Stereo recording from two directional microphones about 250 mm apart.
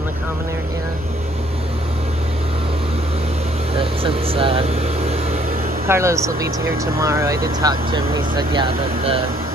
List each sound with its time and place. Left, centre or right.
3.7 s vehicle: right
5.9 s speech: centre